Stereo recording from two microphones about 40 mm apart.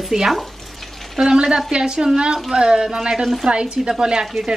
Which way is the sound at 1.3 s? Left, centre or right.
Right.